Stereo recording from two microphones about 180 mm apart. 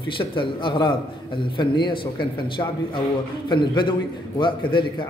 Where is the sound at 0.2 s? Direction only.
25° left (ahead or behind).